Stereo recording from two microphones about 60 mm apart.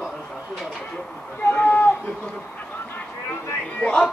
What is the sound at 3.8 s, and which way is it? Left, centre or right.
Speech, centre.